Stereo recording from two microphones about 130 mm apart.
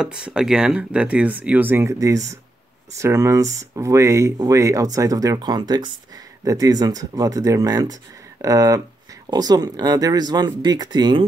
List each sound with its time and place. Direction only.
0.0 s speech: 5° right (ahead or behind); by 11.2 s 35° right (ahead or behind)